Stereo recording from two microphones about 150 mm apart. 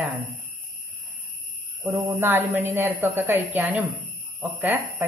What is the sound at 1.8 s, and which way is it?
A woman's voice, 15° right (ahead or behind).